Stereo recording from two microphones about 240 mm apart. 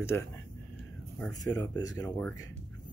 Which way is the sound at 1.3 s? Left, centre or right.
Centre.